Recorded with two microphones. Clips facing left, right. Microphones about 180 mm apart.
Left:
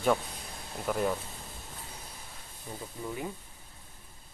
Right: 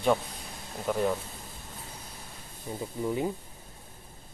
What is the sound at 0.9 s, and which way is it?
Speech, 5° left (ahead or behind).